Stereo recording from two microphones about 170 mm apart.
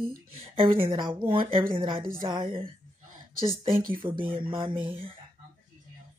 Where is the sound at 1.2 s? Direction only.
30° right (ahead or behind).